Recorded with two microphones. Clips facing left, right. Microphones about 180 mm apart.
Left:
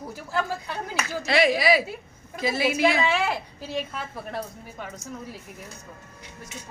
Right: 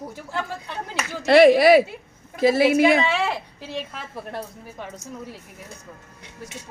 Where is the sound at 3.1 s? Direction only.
Centre (ahead or behind).